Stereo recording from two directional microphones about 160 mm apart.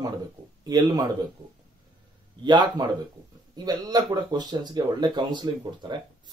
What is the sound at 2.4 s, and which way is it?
Speech, 30° right (ahead or behind).